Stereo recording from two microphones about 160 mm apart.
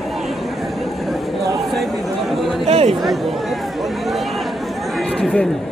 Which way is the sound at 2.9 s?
Centre (ahead or behind).